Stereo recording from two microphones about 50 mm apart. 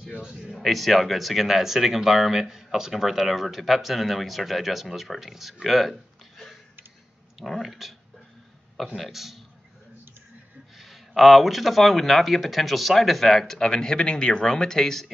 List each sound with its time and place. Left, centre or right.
0.2 s speech: centre
0.6 s speech: centre
8.9 s speech: centre
10.8 s speech: centre